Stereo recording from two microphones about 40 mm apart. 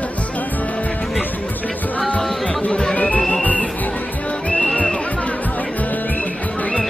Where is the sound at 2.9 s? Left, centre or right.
Left.